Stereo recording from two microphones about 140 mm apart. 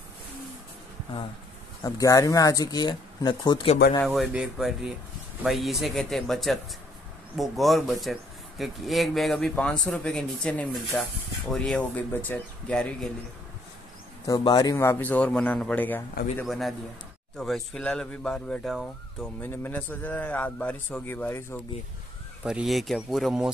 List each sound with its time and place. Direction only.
1.8 s speech: 25° left (ahead or behind)
4.0 s speech: centre (ahead or behind)
14.2 s a man's voice: 30° left (ahead or behind); by 16.0 s 10° left (ahead or behind)
16.4 s speech: centre (ahead or behind)
19.4 s a man's voice: 15° left (ahead or behind)
22.4 s speech: 5° right (ahead or behind)